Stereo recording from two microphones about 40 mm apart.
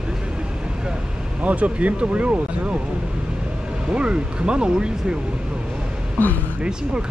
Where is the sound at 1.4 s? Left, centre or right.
Right.